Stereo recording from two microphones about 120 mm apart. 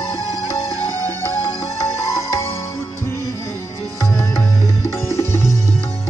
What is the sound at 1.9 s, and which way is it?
Music, 25° left (ahead or behind).